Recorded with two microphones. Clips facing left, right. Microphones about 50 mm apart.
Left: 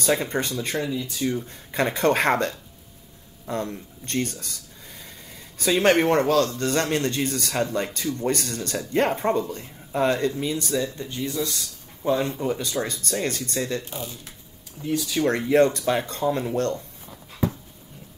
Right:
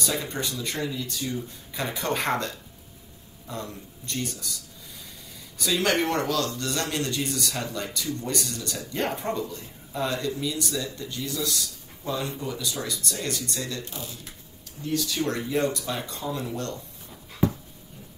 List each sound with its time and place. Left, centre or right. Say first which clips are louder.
0.0 s speech: left 6 dB; left
0.8 s speech: left 3 dB; centre
1.2 s speech: left 5 dB; left
5.6 s speech: left 5 dB; left
12.1 s speech: left 7 dB; left
15.2 s speech: left 10 dB; left